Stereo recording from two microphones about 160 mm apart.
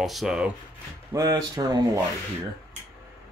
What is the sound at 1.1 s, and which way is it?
Speech, 20° right (ahead or behind).